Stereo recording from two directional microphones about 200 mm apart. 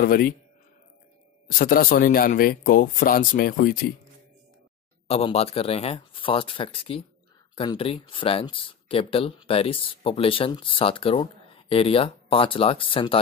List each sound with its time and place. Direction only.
0.0 s speech: 45° left (ahead or behind)
1.5 s speech: 45° left (ahead or behind)
5.0 s speech: 30° left (ahead or behind)